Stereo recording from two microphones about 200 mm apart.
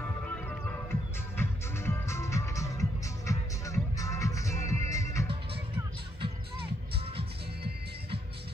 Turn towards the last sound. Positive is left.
turn(degrees=-30)  # may be behind; listen again after turning